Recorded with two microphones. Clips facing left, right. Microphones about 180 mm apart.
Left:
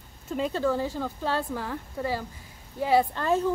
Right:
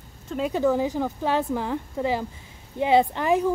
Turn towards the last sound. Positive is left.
turn(degrees=-15)  # may be behind; listen again after turning